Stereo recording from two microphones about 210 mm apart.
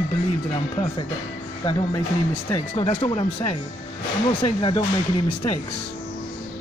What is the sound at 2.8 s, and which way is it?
Speech, 25° left (ahead or behind).